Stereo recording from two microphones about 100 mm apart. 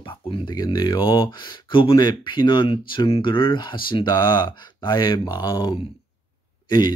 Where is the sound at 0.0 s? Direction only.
55° left (ahead or behind).